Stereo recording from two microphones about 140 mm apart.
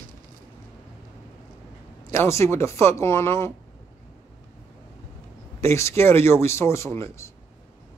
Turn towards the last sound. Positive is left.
turn(degrees=20)  # may be behind; listen again after turning